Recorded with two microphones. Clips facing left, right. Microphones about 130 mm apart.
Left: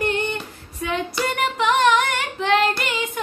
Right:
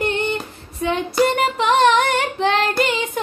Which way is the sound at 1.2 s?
25° right (ahead or behind).